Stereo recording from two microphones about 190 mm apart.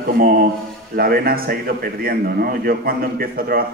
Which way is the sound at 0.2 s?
50° right (ahead or behind).